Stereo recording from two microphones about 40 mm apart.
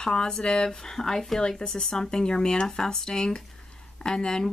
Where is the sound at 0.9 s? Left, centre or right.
Centre.